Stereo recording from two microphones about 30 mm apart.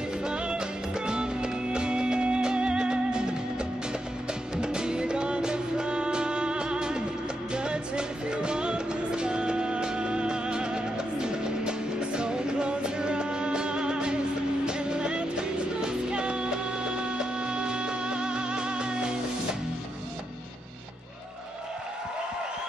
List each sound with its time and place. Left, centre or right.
0.2 s music: right